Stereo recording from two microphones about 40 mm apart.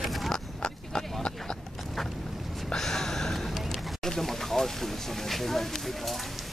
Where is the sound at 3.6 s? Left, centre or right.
Centre.